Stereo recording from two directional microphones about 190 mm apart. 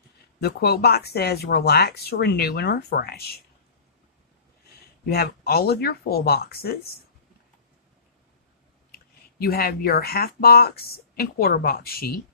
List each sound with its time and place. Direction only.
0.4 s speech: 60° left (ahead or behind)
5.0 s speech: 55° left (ahead or behind)
9.4 s speech: 55° left (ahead or behind)